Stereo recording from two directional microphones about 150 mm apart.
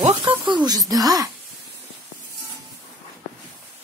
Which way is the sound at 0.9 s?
25° right (ahead or behind).